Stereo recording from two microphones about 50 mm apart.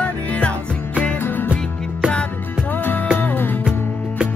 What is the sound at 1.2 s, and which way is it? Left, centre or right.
Music, left.